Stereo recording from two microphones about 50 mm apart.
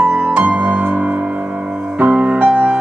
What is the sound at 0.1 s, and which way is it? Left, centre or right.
Music, right.